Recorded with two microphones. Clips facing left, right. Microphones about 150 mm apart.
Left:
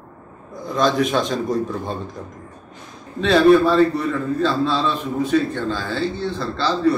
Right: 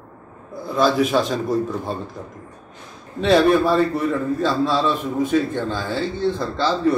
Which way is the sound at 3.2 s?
15° right (ahead or behind).